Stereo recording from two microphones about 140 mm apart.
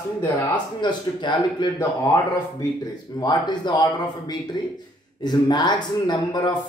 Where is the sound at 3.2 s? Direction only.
30° left (ahead or behind).